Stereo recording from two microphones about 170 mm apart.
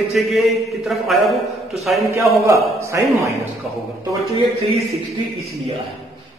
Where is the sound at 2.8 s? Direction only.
15° right (ahead or behind).